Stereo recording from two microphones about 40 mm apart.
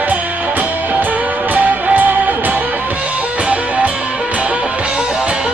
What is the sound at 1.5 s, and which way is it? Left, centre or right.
Music, right.